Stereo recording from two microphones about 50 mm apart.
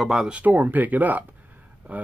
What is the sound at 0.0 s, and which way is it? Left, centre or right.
Speech, centre.